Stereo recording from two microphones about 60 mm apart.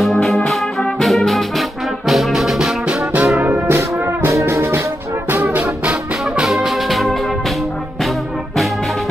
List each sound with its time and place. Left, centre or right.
0.0 s music: centre
2.9 s brass instrument: right
3.6 s music: right
6.4 s music: centre